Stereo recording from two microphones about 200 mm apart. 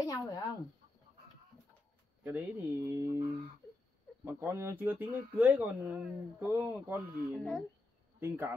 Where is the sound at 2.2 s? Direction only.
10° right (ahead or behind).